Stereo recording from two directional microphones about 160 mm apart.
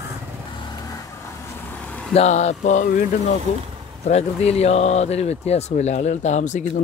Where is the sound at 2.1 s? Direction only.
45° left (ahead or behind).